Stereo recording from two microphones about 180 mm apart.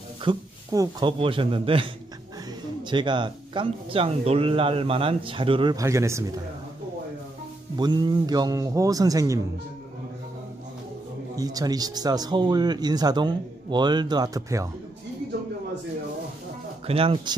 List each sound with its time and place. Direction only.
0.2 s speech: 25° right (ahead or behind)
7.7 s speech: 25° right (ahead or behind)
11.3 s speech: 20° right (ahead or behind)
16.8 s speech: 30° right (ahead or behind)